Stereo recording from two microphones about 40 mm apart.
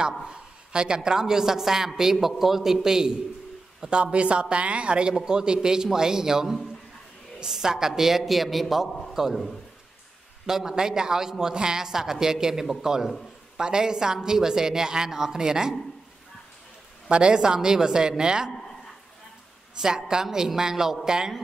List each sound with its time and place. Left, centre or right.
0.2 s a woman's voice: right
3.9 s a woman's voice: right; by 8.8 s centre
9.2 s a man's voice: centre
10.4 s a man's voice: centre
17.1 s a woman's voice: right
20.1 s a man's voice: centre